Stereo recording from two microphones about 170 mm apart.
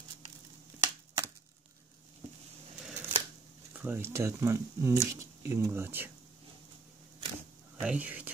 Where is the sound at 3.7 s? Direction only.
10° right (ahead or behind).